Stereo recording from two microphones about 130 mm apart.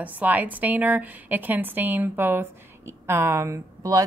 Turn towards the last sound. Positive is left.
turn(degrees=-25)  # may be behind; listen again after turning